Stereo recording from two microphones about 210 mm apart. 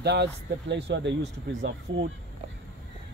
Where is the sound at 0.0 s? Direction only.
55° right (ahead or behind).